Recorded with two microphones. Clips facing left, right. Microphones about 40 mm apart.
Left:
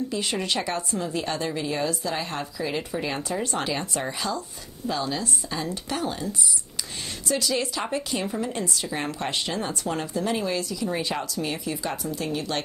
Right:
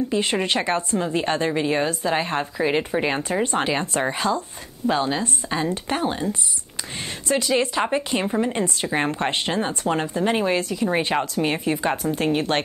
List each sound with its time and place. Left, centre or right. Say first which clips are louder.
0.1 s a woman's voice: right 5 dB; right